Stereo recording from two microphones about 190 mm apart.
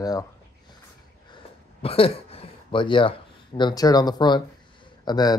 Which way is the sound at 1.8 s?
30° left (ahead or behind).